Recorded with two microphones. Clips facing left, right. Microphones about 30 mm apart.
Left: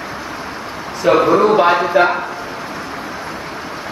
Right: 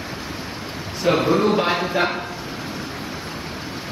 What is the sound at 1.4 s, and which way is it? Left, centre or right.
Speech, centre.